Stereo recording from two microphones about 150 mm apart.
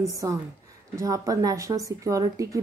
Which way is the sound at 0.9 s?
25° right (ahead or behind).